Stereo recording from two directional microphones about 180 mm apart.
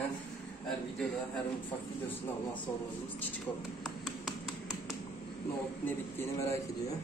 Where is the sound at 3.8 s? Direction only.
Centre (ahead or behind).